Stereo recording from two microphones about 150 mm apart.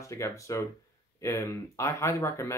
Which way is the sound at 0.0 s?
20° left (ahead or behind).